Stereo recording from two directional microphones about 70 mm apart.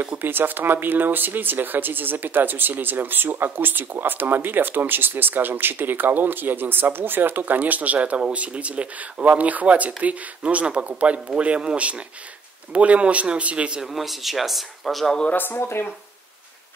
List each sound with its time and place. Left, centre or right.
0.2 s speech: right
13.9 s speech: centre
15.3 s speech: left